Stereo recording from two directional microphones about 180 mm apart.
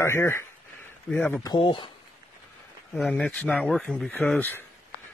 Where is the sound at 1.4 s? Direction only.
25° left (ahead or behind).